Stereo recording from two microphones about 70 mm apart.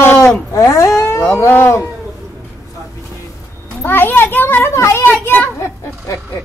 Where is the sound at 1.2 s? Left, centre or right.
Left.